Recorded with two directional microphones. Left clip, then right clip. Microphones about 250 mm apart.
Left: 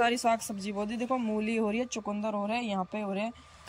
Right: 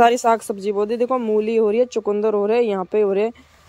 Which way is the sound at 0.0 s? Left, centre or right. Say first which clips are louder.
Right 12 dB; centre.